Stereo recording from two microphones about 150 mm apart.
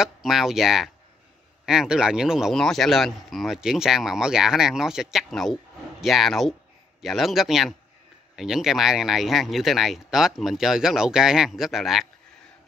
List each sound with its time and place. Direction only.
0.0 s speech: centre (ahead or behind)